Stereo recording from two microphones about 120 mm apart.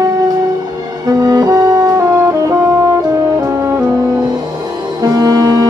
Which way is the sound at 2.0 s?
25° right (ahead or behind).